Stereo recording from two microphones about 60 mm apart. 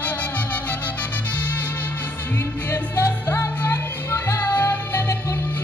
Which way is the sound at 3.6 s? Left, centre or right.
Left.